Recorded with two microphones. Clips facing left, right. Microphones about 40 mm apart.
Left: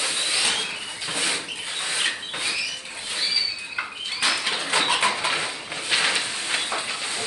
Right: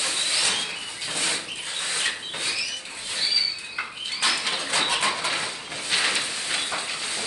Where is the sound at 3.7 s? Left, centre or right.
Centre.